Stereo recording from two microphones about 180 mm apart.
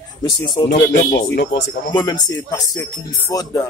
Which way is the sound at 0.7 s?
70° left (ahead or behind).